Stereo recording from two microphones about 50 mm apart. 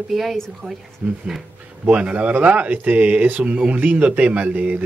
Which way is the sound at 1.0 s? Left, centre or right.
Right.